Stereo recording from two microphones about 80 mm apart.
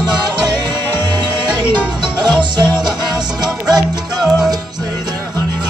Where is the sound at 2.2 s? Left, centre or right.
Right.